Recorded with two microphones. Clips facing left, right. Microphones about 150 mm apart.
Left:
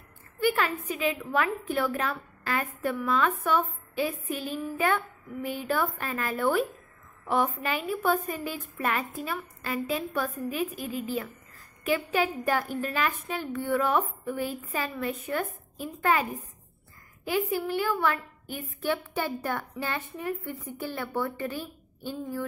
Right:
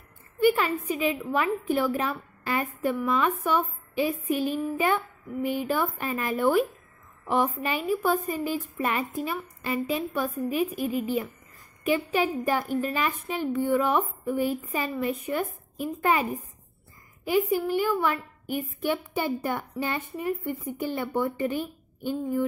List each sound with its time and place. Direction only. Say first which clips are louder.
0.4 s a woman's voice: right 4 dB; 5° right (ahead or behind)
17.2 s a woman's voice: right 4 dB; 10° right (ahead or behind)